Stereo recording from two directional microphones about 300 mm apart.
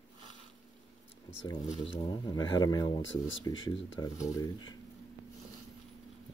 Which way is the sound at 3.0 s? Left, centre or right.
Left.